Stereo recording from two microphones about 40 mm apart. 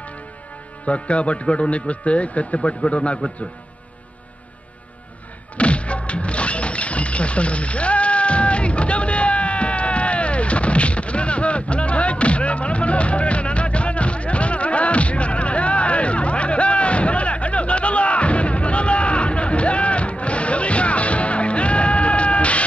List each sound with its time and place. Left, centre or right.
0.8 s a man's voice: left
5.6 s music: left